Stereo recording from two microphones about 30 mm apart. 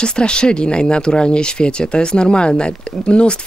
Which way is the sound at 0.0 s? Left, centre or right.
Left.